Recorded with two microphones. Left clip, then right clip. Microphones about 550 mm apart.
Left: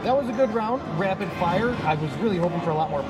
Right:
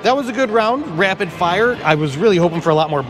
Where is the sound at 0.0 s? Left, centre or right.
Right.